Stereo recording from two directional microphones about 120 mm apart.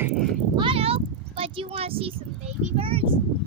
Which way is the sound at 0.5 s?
50° right (ahead or behind).